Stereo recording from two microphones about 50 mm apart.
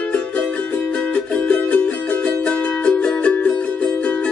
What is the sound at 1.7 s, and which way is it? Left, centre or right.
Music, left.